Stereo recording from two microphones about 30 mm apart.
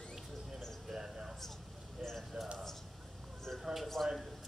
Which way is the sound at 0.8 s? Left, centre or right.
Centre.